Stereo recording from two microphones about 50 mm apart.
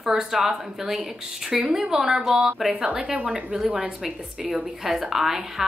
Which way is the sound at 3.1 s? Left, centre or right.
Right.